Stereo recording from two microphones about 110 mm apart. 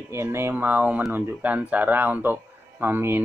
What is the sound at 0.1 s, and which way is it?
Speech, 25° right (ahead or behind).